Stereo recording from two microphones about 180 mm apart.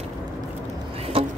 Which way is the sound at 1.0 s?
35° right (ahead or behind).